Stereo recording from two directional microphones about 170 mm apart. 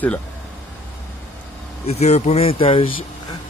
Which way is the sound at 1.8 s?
40° left (ahead or behind).